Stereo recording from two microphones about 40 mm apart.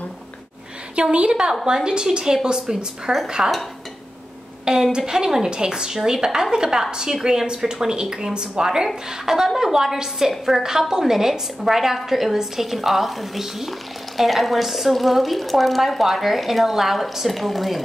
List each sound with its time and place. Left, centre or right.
1.1 s a woman's voice: right
4.9 s a woman's voice: centre